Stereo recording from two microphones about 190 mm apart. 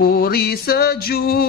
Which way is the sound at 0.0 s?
50° left (ahead or behind).